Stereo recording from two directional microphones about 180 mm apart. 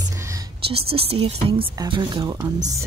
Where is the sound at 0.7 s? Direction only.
35° right (ahead or behind).